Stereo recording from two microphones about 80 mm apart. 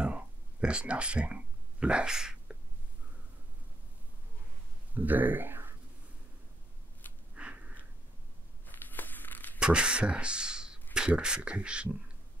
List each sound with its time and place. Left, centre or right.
0.0 s a sound: centre
4.9 s speech: right
7.0 s a sound: left
7.3 s sniff: centre
8.6 s crumpling: left
9.6 s speech: centre